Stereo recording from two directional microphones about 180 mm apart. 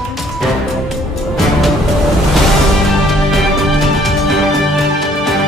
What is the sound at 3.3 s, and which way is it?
Music, centre (ahead or behind).